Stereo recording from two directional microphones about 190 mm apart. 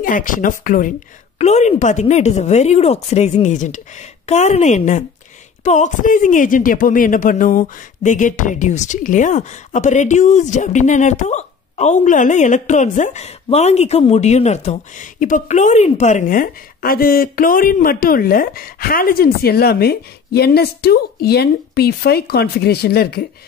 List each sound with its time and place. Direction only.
0.0 s speech: 45° left (ahead or behind)